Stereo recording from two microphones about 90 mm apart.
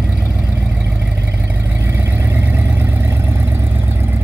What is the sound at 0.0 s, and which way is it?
Vehicle, 10° right (ahead or behind).